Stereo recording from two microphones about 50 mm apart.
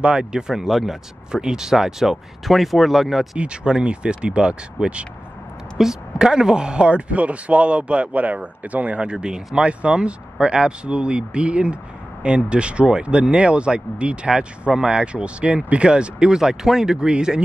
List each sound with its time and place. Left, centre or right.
0.0 s speech: centre
0.7 s speech: centre
1.3 s speech: centre
3.3 s speech: centre
5.8 s speech: centre